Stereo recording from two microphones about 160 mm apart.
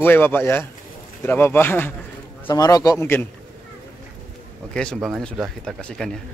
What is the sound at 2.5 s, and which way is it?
Speech, 25° left (ahead or behind).